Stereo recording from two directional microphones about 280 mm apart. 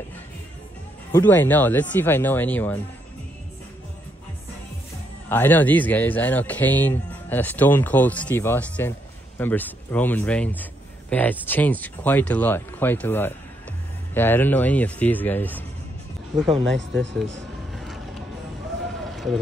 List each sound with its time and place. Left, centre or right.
1.1 s a man's voice: centre
5.3 s a man's voice: centre
16.6 s speech: right